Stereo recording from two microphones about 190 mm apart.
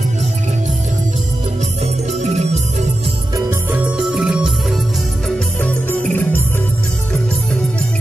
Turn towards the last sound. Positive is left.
turn(degrees=10)  # may be behind; listen again after turning